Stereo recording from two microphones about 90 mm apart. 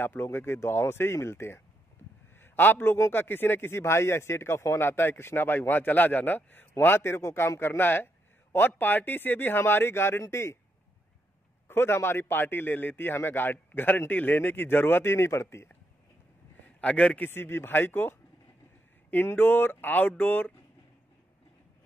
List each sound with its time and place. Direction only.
0.0 s a man's voice: 25° left (ahead or behind)
11.6 s a man's voice: 30° left (ahead or behind)
16.8 s a man's voice: 15° left (ahead or behind)
17.3 s a man's voice: 25° left (ahead or behind)